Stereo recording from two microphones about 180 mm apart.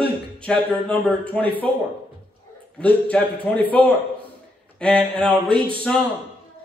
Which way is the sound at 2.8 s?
5° left (ahead or behind).